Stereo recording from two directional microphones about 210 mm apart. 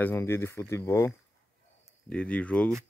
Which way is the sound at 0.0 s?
10° left (ahead or behind).